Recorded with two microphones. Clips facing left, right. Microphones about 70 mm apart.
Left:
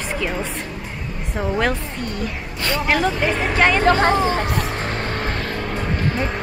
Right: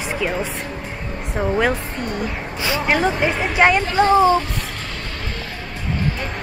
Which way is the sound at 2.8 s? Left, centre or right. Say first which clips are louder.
Right 1 dB; centre.